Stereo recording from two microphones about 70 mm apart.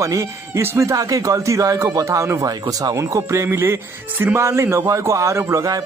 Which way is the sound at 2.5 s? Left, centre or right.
Right.